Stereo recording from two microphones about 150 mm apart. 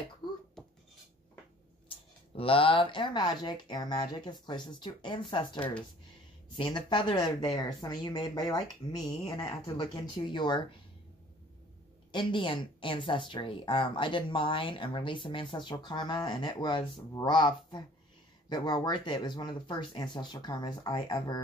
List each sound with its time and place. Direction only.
0.2 s a sound: 30° left (ahead or behind)
1.9 s speech: 35° left (ahead or behind)
12.1 s speech: 30° left (ahead or behind)